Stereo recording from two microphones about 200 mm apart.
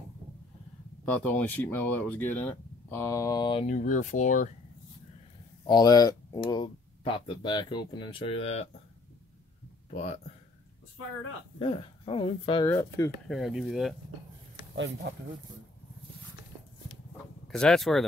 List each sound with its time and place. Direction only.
1.0 s speech: 10° left (ahead or behind); by 4.5 s 40° left (ahead or behind)
5.7 s speech: 20° left (ahead or behind)
11.6 s speech: 25° left (ahead or behind)
12.6 s speech: 15° left (ahead or behind)
13.3 s speech: centre (ahead or behind)
17.5 s speech: centre (ahead or behind)